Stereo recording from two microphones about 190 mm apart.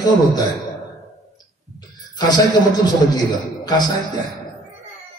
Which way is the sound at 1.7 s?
20° left (ahead or behind).